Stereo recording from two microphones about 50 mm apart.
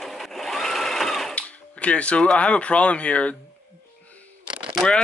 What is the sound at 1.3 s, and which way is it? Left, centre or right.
Speech, left.